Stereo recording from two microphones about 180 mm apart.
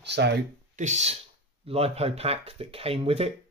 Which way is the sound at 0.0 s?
70° right (ahead or behind).